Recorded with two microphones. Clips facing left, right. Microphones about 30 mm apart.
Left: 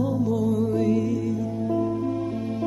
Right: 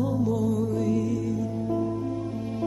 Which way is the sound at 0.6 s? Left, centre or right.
Left.